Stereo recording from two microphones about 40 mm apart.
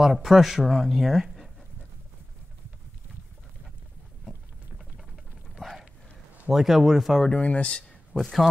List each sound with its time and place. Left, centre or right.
0.0 s speech: centre
4.3 s a sound: centre
6.5 s a man's voice: centre
7.2 s speech: left
8.1 s speech: centre